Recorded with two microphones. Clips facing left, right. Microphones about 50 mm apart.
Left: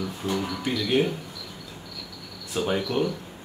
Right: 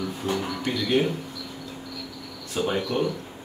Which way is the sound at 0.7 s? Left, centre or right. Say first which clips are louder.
Even; centre.